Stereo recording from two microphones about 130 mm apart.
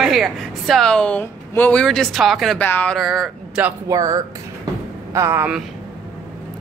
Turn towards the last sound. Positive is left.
turn(degrees=-20)  # may be behind; listen again after turning